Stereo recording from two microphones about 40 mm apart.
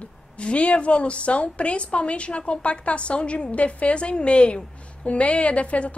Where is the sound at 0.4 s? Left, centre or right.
Left.